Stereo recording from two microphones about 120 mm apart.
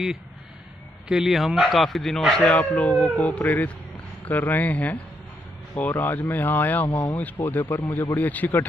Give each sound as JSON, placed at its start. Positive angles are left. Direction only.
{"t": 1.0, "sound": "speech", "side_deg": -5}